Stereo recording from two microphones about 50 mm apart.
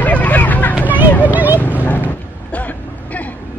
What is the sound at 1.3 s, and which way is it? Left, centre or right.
Vehicle, right.